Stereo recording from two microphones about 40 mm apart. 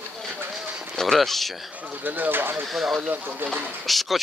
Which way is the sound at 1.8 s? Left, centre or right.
Right.